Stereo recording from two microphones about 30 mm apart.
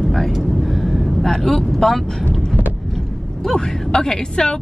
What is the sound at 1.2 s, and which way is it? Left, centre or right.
Speech, centre.